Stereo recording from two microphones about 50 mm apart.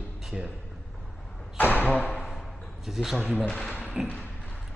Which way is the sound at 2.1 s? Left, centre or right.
Centre.